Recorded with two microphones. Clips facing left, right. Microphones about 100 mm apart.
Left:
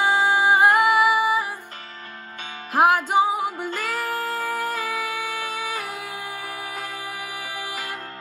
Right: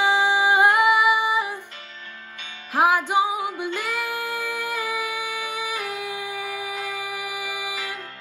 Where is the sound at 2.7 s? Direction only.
45° left (ahead or behind).